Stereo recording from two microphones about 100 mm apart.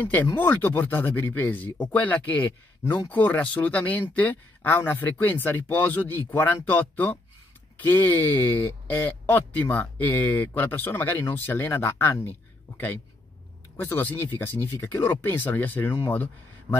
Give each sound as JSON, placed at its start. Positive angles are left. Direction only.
{"t": 0.0, "sound": "speech", "side_deg": 20}